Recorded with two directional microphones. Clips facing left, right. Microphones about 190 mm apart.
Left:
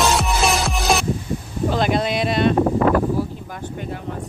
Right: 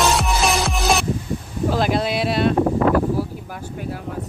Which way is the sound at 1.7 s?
5° right (ahead or behind).